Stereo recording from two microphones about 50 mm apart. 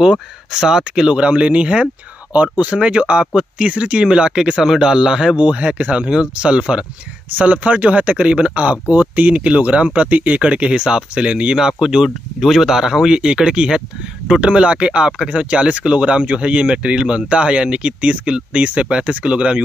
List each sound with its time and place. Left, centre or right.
0.0 s speech: centre
5.4 s speech: right